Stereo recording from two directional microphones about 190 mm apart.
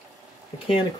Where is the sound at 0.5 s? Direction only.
30° left (ahead or behind).